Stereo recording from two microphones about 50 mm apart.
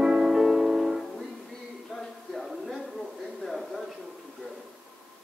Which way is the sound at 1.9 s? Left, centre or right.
Centre.